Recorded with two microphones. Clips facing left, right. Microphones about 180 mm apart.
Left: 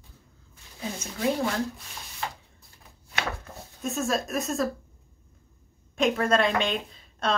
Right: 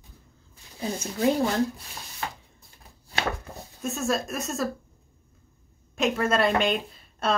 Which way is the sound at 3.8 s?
Centre (ahead or behind).